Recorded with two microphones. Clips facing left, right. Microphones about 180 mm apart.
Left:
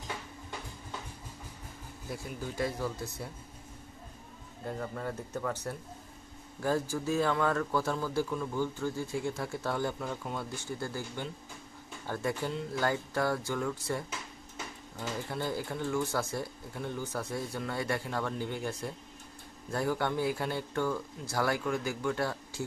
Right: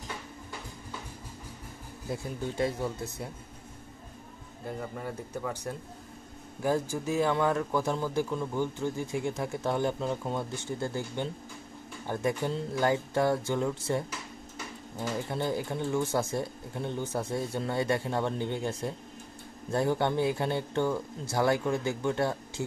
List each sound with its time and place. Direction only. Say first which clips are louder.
2.0 s a man's voice: right 5 dB; 25° right (ahead or behind)
4.6 s a man's voice: even; 15° right (ahead or behind)